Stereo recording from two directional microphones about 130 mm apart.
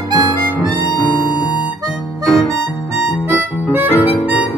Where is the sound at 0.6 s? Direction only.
30° left (ahead or behind).